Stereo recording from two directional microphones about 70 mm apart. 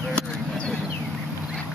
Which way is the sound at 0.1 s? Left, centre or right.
Centre.